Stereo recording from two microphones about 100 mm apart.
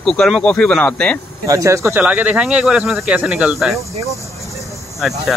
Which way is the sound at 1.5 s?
30° right (ahead or behind).